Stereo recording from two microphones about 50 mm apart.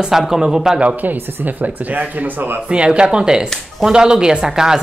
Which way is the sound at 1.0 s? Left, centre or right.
Right.